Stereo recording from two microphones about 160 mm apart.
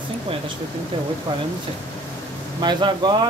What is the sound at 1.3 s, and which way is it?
Speech, 30° right (ahead or behind).